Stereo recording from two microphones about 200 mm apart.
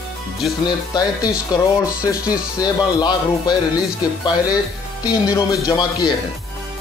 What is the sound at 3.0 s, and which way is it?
Speech, 20° left (ahead or behind).